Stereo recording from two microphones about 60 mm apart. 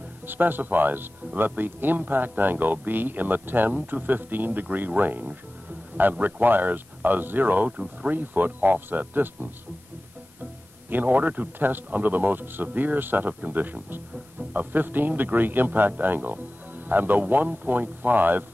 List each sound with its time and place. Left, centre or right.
0.3 s speech: right
10.9 s speech: right